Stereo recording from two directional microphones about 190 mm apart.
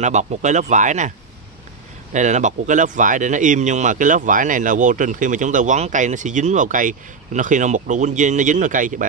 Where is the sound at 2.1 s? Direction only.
40° right (ahead or behind).